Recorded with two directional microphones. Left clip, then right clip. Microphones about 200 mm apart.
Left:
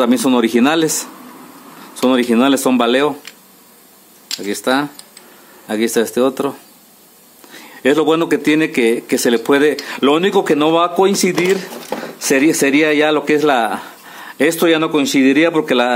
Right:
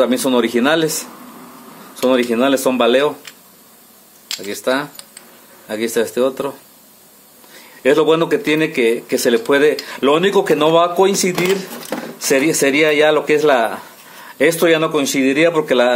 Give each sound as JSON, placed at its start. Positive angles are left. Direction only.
{"t": 0.0, "sound": "speech", "side_deg": 25}
{"t": 4.5, "sound": "speech", "side_deg": 25}
{"t": 7.5, "sound": "speech", "side_deg": 30}